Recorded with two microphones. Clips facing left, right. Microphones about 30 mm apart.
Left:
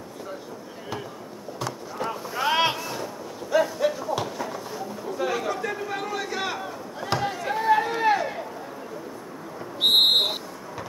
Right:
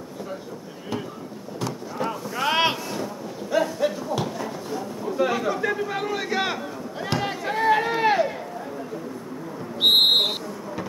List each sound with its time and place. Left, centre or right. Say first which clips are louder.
1.6 s boat: right 2 dB; centre
2.4 s a sound: right 1 dB; centre
5.1 s chatter: right 4 dB; centre
7.1 s chop: left 1 dB; centre
7.4 s run: right 1 dB; centre
9.8 s a sound: right 1 dB; centre